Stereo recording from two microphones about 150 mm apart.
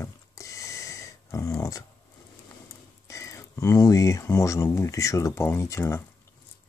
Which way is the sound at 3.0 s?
20° left (ahead or behind).